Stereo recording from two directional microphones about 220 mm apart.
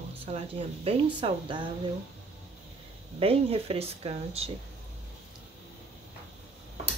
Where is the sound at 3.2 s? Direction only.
25° right (ahead or behind).